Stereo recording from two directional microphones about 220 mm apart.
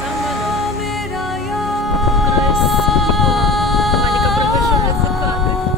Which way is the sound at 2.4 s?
Centre (ahead or behind).